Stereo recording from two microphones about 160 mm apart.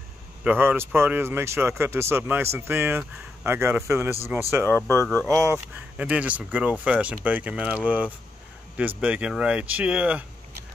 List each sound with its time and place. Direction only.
0.4 s speech: 10° right (ahead or behind)
5.9 s speech: 10° right (ahead or behind)